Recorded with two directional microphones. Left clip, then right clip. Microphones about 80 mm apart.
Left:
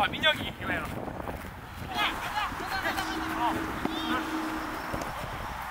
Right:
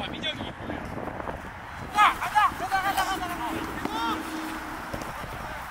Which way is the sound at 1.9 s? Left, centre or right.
Right.